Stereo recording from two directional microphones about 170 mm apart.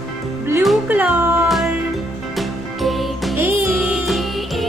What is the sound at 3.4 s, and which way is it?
Music, 15° right (ahead or behind).